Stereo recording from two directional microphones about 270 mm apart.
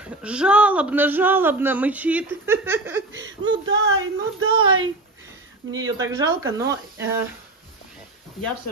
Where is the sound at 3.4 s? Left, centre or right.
Right.